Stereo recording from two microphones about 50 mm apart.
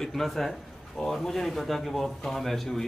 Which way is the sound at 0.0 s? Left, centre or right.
Centre.